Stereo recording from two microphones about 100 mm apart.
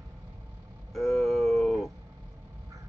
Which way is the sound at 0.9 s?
Centre (ahead or behind).